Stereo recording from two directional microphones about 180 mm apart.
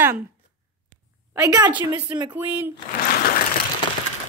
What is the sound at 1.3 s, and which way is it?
A woman's voice, 20° right (ahead or behind).